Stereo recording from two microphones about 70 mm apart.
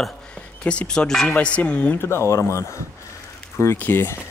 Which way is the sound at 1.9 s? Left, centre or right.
Left.